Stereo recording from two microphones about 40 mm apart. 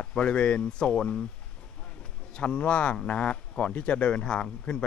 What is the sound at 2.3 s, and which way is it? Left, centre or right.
Speech, left.